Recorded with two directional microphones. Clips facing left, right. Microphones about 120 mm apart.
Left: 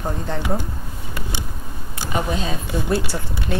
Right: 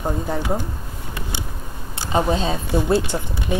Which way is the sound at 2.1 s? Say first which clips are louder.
Right 4 dB; 30° right (ahead or behind).